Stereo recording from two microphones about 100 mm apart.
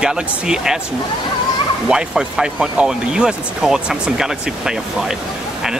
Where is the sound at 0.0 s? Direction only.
5° right (ahead or behind).